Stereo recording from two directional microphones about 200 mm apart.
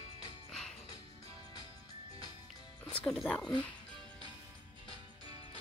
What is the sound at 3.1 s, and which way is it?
Speech, 5° left (ahead or behind).